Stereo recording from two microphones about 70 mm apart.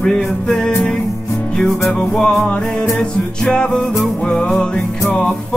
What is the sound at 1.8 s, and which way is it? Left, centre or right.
Music, centre.